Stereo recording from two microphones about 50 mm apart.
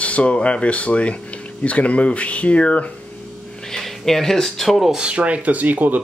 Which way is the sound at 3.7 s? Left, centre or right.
Centre.